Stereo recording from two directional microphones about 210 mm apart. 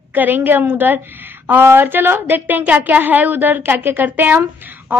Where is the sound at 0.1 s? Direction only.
10° right (ahead or behind).